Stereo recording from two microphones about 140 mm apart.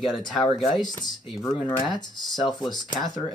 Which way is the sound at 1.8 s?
30° left (ahead or behind).